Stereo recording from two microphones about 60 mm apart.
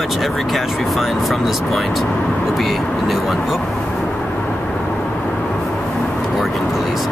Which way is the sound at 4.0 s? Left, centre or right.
Centre.